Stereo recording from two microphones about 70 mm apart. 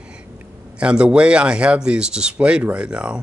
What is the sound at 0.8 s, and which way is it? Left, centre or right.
Speech, centre.